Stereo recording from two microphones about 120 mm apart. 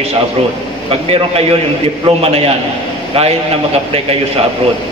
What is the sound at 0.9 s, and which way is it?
A man's voice, 55° right (ahead or behind).